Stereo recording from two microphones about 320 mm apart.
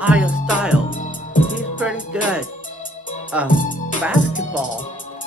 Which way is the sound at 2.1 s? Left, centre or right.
Centre.